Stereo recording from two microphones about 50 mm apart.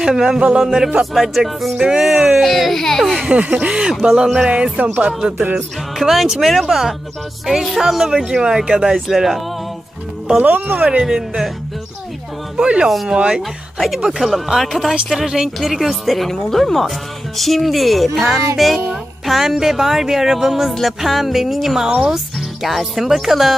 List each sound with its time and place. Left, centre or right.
0.0 s speech: centre
1.8 s speech: centre
3.3 s speech: right
5.9 s speech: centre
10.4 s speech: right; by 11.5 s centre
12.5 s speech: right
12.9 s speech: centre